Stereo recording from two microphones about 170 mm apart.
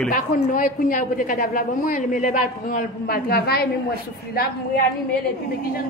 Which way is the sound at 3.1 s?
65° left (ahead or behind).